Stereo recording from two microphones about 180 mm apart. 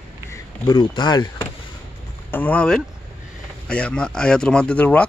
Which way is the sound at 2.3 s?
10° left (ahead or behind).